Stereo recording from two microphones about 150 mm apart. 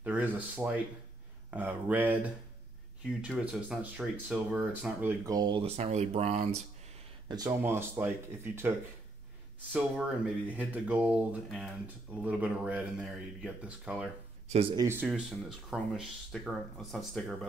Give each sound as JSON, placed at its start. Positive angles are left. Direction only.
{"t": 0.0, "sound": "speech", "side_deg": -10}
{"t": 5.2, "sound": "speech", "side_deg": -25}
{"t": 5.7, "sound": "speech", "side_deg": -45}
{"t": 7.2, "sound": "speech", "side_deg": -25}
{"t": 9.6, "sound": "speech", "side_deg": -10}
{"t": 15.0, "sound": "speech", "side_deg": -5}